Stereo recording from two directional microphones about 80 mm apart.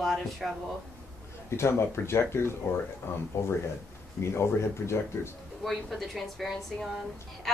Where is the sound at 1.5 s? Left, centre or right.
Left.